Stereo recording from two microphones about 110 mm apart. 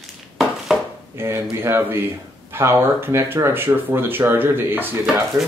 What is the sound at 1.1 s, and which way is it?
Speech, 20° right (ahead or behind).